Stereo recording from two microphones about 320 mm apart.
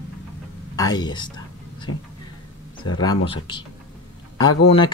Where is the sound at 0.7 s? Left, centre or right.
Centre.